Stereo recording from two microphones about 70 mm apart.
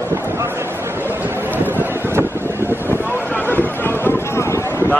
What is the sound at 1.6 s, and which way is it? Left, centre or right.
Vehicle, right.